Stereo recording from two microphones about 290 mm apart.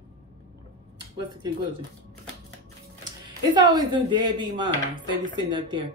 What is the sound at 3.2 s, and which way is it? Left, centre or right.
Speech, centre.